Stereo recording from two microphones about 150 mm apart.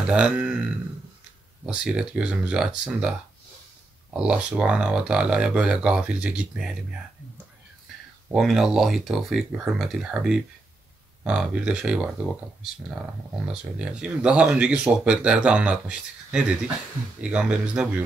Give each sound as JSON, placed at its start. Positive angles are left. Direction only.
{"t": 0.1, "sound": "speech", "side_deg": -5}
{"t": 1.7, "sound": "speech", "side_deg": -5}
{"t": 4.2, "sound": "speech", "side_deg": -5}
{"t": 8.3, "sound": "speech", "side_deg": 0}
{"t": 13.5, "sound": "speech", "side_deg": -5}